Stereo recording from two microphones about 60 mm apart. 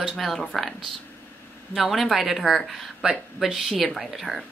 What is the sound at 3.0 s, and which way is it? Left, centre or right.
Speech, centre.